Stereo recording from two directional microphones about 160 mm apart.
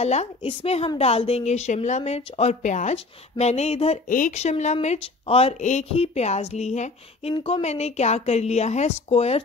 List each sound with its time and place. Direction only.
0.0 s a woman's voice: 40° left (ahead or behind)